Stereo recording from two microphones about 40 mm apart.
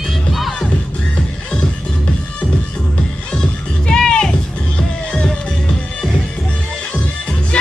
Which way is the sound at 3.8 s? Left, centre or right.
Centre.